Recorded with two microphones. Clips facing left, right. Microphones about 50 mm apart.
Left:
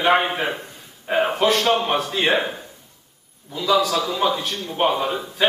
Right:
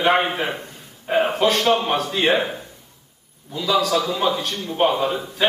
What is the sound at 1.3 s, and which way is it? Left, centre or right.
Speech, centre.